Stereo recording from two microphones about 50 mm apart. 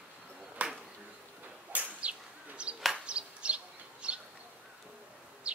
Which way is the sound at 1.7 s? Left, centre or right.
Right.